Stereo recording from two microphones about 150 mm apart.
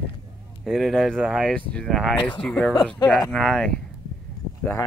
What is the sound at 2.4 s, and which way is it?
Speech, 5° left (ahead or behind).